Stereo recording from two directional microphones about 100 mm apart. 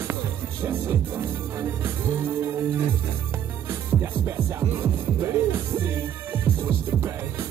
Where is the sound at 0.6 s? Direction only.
25° right (ahead or behind).